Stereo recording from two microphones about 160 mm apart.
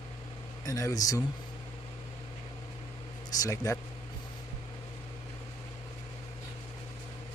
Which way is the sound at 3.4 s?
20° left (ahead or behind).